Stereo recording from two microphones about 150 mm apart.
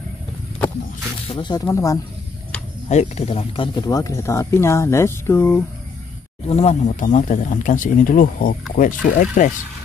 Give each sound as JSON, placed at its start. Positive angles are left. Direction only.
{"t": 1.2, "sound": "speech", "side_deg": 40}
{"t": 1.5, "sound": "speech", "side_deg": 20}
{"t": 2.9, "sound": "speech", "side_deg": 50}
{"t": 3.8, "sound": "speech", "side_deg": 25}
{"t": 6.5, "sound": "speech", "side_deg": 45}